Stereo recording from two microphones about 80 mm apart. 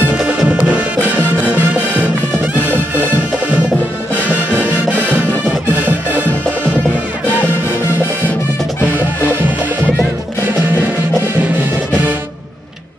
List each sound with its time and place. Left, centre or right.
0.5 s music: centre